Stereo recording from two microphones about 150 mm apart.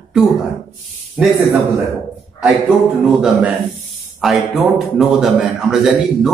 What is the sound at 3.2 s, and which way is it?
Speech, 10° right (ahead or behind).